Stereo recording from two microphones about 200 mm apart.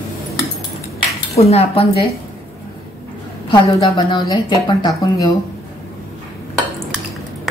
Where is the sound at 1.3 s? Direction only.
30° left (ahead or behind).